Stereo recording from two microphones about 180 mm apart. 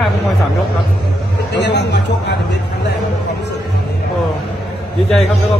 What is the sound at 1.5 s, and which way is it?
Speech, 75° left (ahead or behind).